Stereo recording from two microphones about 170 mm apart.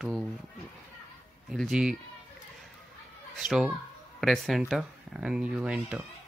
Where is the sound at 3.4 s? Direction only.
5° right (ahead or behind).